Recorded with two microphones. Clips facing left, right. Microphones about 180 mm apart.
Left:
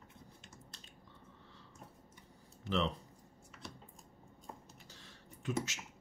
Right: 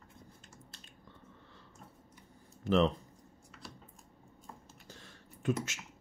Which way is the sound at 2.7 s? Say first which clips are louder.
Right 7 dB; 45° right (ahead or behind).